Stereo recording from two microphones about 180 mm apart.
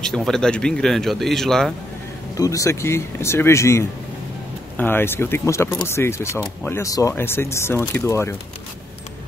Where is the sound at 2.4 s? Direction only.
20° left (ahead or behind).